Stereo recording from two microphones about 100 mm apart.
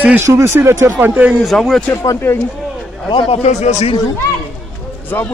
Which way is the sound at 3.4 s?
90° left.